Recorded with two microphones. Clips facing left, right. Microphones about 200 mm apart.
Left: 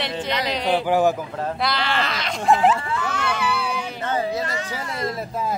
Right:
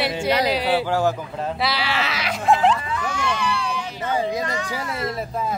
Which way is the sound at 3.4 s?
5° left (ahead or behind).